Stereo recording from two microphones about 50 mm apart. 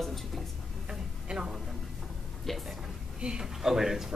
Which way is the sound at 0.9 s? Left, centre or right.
Centre.